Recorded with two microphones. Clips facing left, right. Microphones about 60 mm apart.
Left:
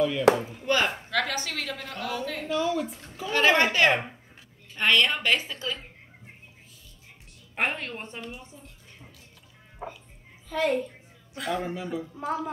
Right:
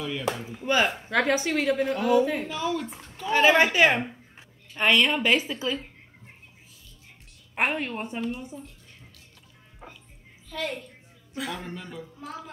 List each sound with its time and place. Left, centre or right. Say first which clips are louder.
0.3 s speech: left 10 dB; left
0.7 s a woman's voice: right 2 dB; centre
7.5 s a woman's voice: right 3 dB; centre
11.3 s speech: left 4 dB; centre